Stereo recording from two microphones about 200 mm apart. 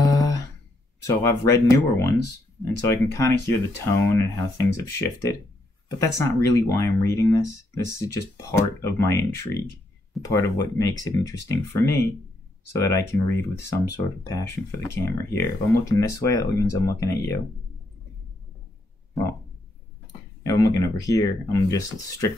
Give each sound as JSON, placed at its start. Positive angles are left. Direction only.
{"t": 0.0, "sound": "a sound", "side_deg": 15}
{"t": 1.0, "sound": "speech", "side_deg": 15}
{"t": 20.4, "sound": "speech", "side_deg": 15}